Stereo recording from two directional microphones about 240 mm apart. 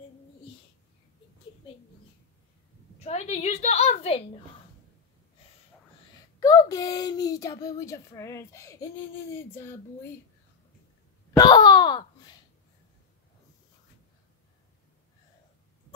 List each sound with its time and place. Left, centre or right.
3.0 s a woman's voice: left
6.4 s speech: centre
11.3 s speech: centre